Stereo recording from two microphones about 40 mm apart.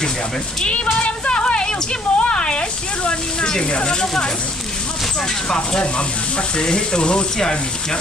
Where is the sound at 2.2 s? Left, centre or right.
Left.